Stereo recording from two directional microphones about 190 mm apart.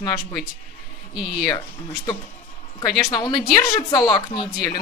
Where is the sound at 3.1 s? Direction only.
20° left (ahead or behind).